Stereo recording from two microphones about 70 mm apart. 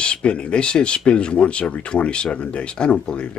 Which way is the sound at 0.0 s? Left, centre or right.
Centre.